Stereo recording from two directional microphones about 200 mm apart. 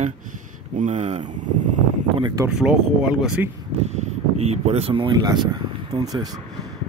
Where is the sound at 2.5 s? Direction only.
5° right (ahead or behind).